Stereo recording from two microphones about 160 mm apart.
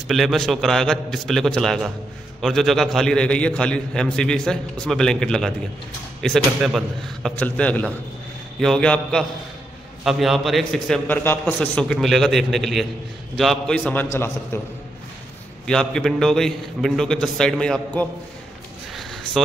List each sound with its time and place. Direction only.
0.1 s a man's voice: centre (ahead or behind)
15.6 s a man's voice: 5° left (ahead or behind)
18.9 s a sound: centre (ahead or behind)